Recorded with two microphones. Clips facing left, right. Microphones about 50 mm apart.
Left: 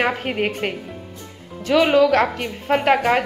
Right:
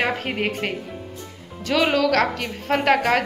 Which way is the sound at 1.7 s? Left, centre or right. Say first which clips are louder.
Left 4 dB; centre.